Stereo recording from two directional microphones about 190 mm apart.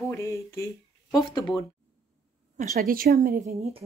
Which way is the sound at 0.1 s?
15° left (ahead or behind).